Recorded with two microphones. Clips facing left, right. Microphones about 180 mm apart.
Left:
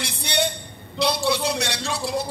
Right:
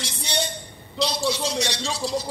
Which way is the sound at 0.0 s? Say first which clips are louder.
Left 4 dB; 60° left (ahead or behind).